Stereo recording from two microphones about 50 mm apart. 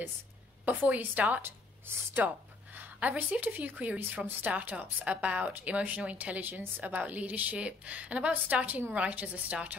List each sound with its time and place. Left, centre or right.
0.7 s a woman's voice: right
1.4 s a woman's voice: right
2.2 s a woman's voice: right